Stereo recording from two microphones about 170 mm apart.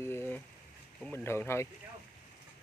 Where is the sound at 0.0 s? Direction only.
15° left (ahead or behind).